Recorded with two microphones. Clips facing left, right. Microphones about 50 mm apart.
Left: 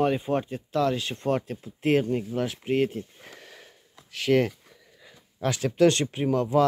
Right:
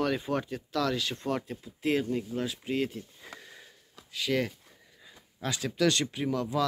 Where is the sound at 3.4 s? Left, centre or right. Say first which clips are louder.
Left 2 dB; left.